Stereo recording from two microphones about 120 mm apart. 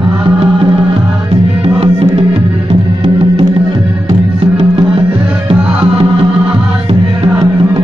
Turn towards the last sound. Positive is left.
turn(degrees=-50)  # may be behind; listen again after turning